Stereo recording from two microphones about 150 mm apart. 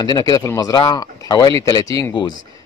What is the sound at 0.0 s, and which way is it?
A man's voice, 25° left (ahead or behind).